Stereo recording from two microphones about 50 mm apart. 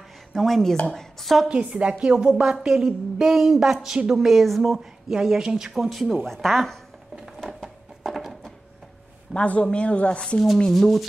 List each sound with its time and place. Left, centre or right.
0.3 s speech: centre
1.5 s a woman's voice: right; by 4.8 s centre
5.1 s a woman's voice: centre
5.9 s speech: centre
7.3 s a sound: centre
9.3 s speech: left
10.7 s speech: centre